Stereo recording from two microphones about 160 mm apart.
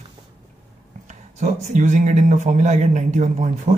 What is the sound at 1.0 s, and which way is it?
Speech, 45° right (ahead or behind).